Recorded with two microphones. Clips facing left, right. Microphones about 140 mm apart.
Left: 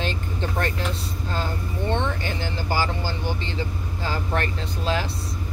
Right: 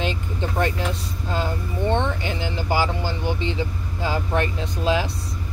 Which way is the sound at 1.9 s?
15° right (ahead or behind).